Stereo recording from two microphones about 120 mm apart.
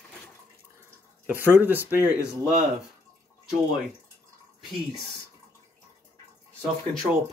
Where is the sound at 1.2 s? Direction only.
15° right (ahead or behind).